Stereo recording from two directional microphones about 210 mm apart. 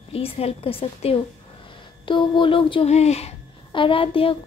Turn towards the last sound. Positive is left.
turn(degrees=25)  # may be behind; listen again after turning